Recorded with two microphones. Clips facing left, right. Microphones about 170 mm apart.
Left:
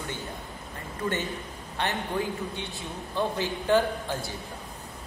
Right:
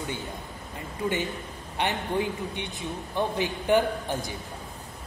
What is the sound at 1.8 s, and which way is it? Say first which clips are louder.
A man's voice: right 2 dB; 15° right (ahead or behind).